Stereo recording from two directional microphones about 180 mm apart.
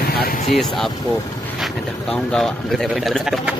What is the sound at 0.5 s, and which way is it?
Speech, centre (ahead or behind).